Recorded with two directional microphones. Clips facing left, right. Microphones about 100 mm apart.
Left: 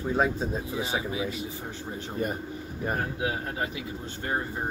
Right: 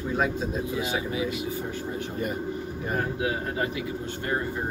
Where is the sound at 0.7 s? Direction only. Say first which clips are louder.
Right 1 dB; 25° left (ahead or behind).